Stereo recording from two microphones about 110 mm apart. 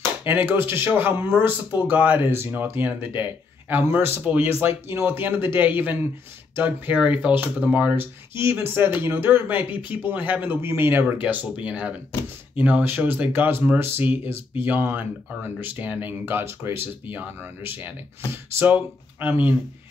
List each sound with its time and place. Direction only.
0.2 s speech: 20° right (ahead or behind)